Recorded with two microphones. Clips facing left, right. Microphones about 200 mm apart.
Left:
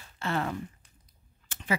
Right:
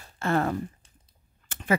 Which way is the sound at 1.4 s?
50° right (ahead or behind).